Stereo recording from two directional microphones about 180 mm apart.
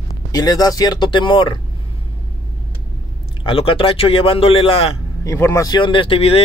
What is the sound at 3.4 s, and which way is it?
Speech, 30° left (ahead or behind).